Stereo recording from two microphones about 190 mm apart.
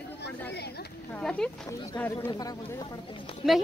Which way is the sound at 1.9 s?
15° left (ahead or behind).